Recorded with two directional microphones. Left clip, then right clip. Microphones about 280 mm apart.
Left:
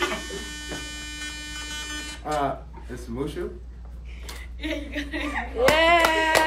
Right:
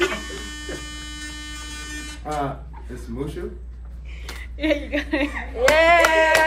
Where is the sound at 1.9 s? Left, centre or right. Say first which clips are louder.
Even; left.